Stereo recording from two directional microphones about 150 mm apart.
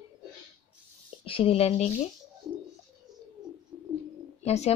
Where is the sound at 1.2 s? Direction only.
40° left (ahead or behind).